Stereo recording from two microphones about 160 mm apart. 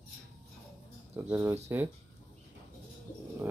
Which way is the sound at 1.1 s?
15° right (ahead or behind).